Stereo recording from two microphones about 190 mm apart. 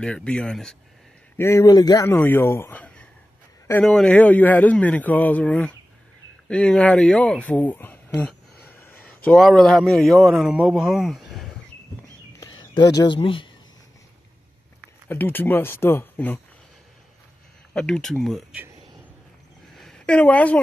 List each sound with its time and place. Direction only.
0.0 s speech: 5° left (ahead or behind)
1.4 s a man's voice: 15° left (ahead or behind); by 11.4 s centre (ahead or behind)
12.5 s speech: 25° left (ahead or behind)
15.0 s a man's voice: 10° left (ahead or behind)
17.7 s speech: 5° left (ahead or behind)
19.7 s a sound: centre (ahead or behind)